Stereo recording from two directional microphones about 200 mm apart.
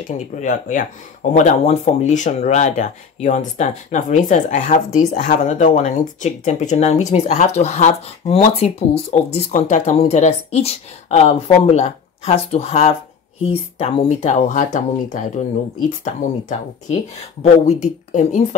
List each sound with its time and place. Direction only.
0.4 s speech: 40° left (ahead or behind)
17.4 s speech: 35° left (ahead or behind)